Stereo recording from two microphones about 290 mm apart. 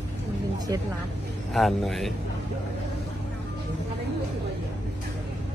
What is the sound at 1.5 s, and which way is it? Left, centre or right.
Speech, centre.